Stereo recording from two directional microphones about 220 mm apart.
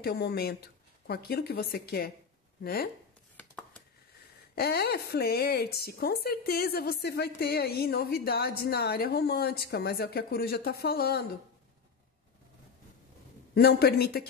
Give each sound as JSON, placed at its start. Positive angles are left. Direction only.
{"t": 0.0, "sound": "a woman's voice", "side_deg": 45}
{"t": 4.6, "sound": "a woman's voice", "side_deg": 45}
{"t": 13.6, "sound": "a woman's voice", "side_deg": 45}